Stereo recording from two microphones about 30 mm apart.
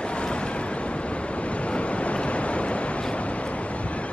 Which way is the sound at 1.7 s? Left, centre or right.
Left.